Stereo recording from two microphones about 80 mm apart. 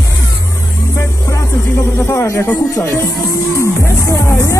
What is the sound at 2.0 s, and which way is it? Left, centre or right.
Speech, left.